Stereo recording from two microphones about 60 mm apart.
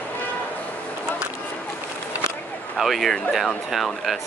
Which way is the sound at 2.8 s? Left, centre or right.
Centre.